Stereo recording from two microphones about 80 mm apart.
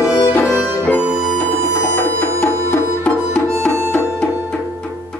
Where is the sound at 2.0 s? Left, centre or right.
Left.